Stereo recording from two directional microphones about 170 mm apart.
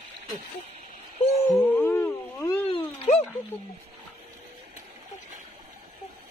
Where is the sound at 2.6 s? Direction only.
35° left (ahead or behind).